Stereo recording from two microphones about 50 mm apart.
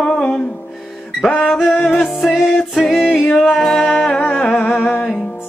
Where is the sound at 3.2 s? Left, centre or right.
Centre.